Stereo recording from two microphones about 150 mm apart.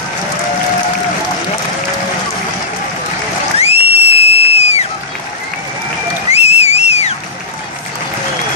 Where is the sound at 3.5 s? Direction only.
40° left (ahead or behind).